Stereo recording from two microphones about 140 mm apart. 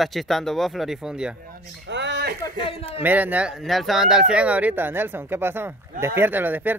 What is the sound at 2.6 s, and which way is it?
Speech, 40° left (ahead or behind).